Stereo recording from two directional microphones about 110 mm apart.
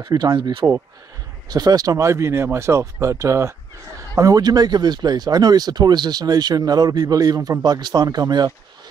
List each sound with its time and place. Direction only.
0.0 s speech: 40° right (ahead or behind)
1.5 s speech: 35° right (ahead or behind)